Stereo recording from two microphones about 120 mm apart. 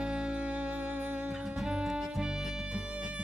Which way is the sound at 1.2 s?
5° right (ahead or behind).